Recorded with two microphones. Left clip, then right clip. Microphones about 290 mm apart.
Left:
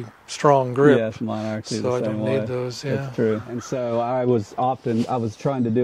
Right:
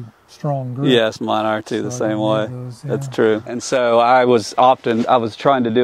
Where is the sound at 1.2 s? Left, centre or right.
Right.